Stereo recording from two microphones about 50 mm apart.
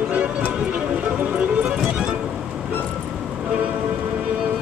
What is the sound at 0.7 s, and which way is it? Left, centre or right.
Music, right.